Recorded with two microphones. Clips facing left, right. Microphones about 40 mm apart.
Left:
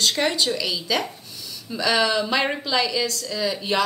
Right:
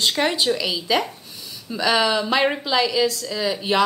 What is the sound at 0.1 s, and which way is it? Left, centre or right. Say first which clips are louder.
A woman's voice: right 2 dB; centre.